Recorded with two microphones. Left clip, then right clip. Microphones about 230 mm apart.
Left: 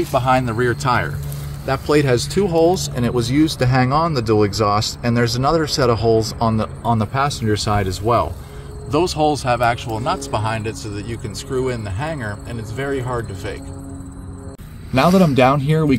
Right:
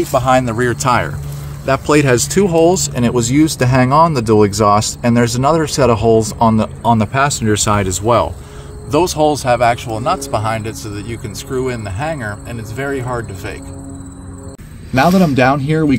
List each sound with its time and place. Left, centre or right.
0.1 s speech: right
1.7 s speech: right
8.9 s speech: right
15.0 s speech: centre